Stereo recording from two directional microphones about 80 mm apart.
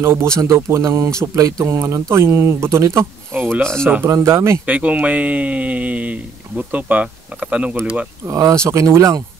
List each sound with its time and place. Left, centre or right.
0.0 s speech: right
3.6 s speech: centre
4.1 s speech: right
4.6 s speech: centre
8.3 s speech: right